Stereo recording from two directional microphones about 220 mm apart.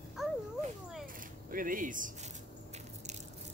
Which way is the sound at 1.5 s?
40° right (ahead or behind).